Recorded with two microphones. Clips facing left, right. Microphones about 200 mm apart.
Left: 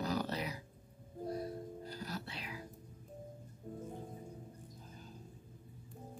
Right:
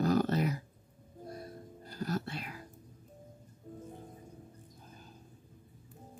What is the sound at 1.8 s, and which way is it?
Music, 50° right (ahead or behind).